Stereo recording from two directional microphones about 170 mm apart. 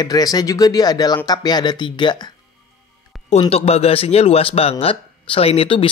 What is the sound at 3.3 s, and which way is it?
Speech, 35° left (ahead or behind).